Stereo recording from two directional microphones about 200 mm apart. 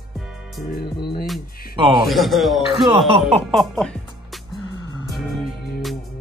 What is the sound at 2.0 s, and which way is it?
Groan, centre (ahead or behind).